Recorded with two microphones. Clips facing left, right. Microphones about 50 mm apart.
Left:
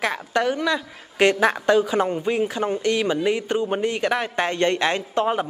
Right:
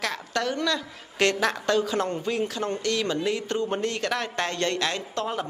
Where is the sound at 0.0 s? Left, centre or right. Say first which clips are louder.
Left 6 dB; centre.